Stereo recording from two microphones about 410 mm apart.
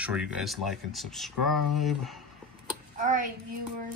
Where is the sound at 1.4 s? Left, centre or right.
Left.